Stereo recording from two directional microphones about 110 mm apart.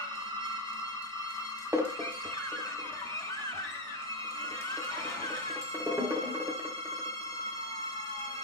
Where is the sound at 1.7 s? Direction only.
25° right (ahead or behind).